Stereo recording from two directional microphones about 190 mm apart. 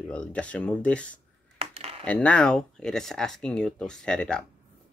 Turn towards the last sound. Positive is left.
turn(degrees=5)  # may be behind; listen again after turning